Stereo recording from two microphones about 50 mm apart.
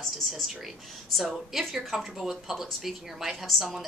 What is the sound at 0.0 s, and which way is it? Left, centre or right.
A woman's voice, centre.